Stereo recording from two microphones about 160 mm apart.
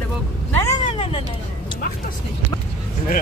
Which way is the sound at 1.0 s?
35° left (ahead or behind).